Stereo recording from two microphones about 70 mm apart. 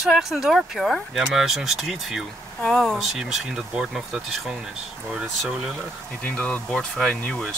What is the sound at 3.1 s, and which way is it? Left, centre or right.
Speech, centre.